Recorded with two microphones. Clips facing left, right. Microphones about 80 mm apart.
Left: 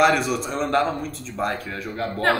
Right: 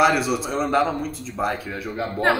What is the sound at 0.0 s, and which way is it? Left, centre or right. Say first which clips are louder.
A woman's voice: even; centre.